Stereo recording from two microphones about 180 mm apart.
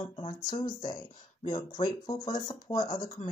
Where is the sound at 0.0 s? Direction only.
30° left (ahead or behind).